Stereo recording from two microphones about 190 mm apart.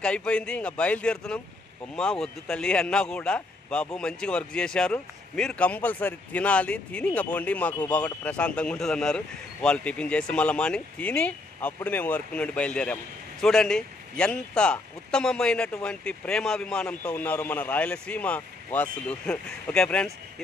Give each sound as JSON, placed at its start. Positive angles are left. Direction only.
{"t": 0.0, "sound": "speech", "side_deg": 5}